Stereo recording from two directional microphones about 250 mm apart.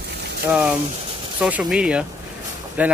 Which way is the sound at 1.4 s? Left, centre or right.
Centre.